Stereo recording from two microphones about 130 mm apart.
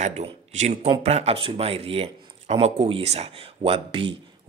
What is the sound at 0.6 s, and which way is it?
Speech, 55° right (ahead or behind).